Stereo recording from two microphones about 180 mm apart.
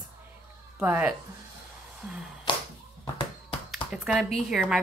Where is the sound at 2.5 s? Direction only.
25° left (ahead or behind).